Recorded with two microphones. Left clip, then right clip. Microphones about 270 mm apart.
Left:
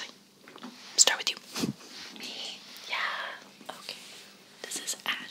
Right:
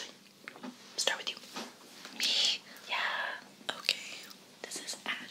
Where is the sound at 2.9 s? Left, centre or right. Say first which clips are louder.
Left 1 dB; centre.